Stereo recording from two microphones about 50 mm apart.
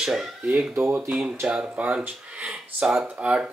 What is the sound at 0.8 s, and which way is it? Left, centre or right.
Speech, right.